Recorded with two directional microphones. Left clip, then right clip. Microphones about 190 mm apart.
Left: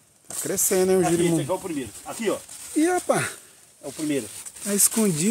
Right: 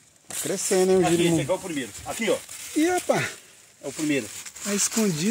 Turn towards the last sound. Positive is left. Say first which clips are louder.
# left 2 dB
turn(degrees=0)  # may be behind; listen again after turning